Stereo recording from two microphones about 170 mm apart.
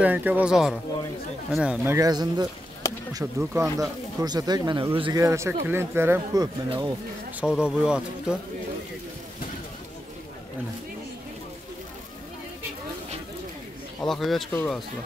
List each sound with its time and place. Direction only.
0.0 s speech: 10° right (ahead or behind); by 5.2 s 25° right (ahead or behind)
5.2 s speech: 15° right (ahead or behind)
7.3 s speech: 5° right (ahead or behind)
14.0 s speech: centre (ahead or behind)